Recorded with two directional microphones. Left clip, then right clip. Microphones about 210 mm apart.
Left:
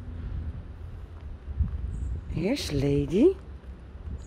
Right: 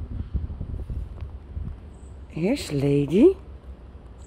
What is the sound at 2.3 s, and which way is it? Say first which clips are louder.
Speech: right 3 dB; 5° right (ahead or behind).